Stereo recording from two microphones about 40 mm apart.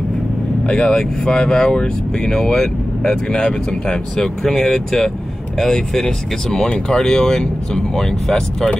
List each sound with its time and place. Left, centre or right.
0.7 s speech: left
4.6 s speech: centre